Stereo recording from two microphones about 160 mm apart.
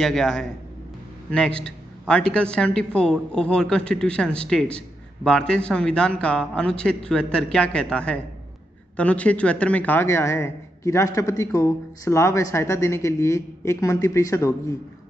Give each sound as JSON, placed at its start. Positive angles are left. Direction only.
{"t": 0.0, "sound": "a man's voice", "side_deg": 5}